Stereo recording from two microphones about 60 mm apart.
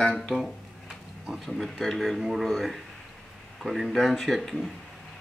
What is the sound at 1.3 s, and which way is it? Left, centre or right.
Speech, centre.